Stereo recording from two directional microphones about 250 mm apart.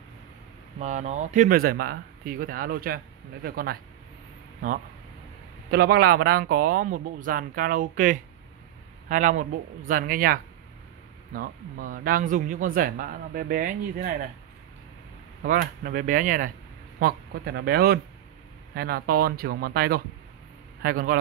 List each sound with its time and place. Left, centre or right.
0.7 s a man's voice: right
5.7 s a man's voice: right
15.4 s a man's voice: right